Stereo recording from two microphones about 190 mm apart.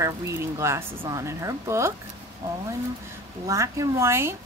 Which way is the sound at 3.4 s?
15° right (ahead or behind).